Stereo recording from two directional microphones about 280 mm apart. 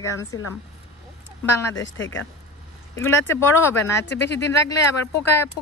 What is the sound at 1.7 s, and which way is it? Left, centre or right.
Speech, left.